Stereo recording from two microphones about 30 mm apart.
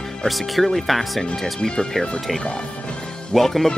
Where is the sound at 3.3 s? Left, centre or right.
Centre.